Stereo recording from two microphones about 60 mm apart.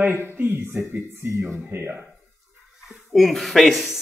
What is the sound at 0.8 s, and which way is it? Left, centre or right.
Speech, right.